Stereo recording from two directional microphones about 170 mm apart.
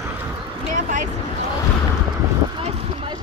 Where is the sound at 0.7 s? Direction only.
45° right (ahead or behind).